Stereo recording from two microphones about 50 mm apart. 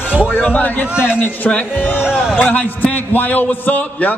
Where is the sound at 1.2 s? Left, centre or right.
Left.